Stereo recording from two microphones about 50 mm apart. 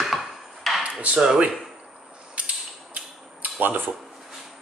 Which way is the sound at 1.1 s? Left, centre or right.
Centre.